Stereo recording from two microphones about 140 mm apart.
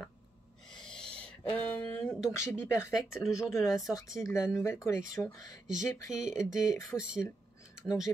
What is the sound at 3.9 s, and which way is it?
Speech, 25° left (ahead or behind).